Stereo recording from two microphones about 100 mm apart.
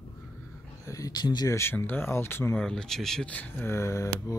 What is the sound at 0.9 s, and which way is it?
Speech, 35° left (ahead or behind).